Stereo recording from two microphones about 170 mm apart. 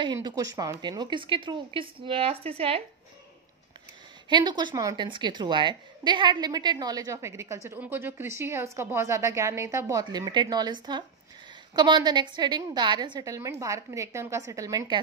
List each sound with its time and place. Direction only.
0.0 s a woman's voice: 25° right (ahead or behind)
4.3 s a woman's voice: 25° right (ahead or behind)